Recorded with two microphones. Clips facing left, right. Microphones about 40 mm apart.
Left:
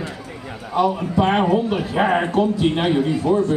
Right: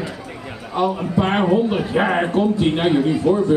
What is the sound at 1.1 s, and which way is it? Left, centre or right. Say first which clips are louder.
Speech: even; centre.